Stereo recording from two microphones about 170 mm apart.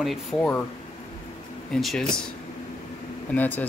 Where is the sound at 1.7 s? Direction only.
Centre (ahead or behind).